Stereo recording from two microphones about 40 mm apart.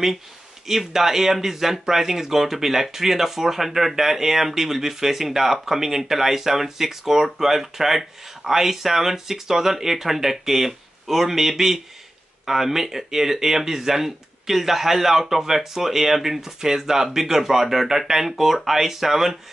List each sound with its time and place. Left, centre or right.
0.7 s speech: centre